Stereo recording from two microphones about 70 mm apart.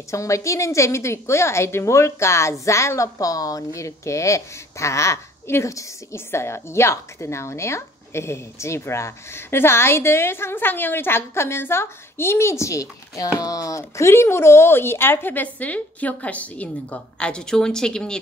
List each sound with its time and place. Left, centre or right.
0.1 s a woman's voice: left; by 18.2 s centre